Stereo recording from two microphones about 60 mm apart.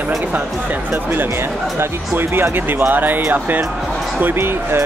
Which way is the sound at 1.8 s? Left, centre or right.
Right.